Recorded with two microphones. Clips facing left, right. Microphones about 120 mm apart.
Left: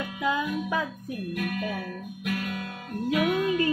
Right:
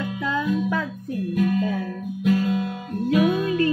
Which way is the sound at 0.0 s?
15° left (ahead or behind).